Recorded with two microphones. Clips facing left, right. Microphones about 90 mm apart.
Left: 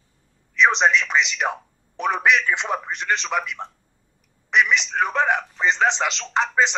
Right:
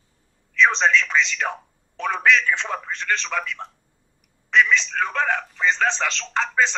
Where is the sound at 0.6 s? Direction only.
20° left (ahead or behind).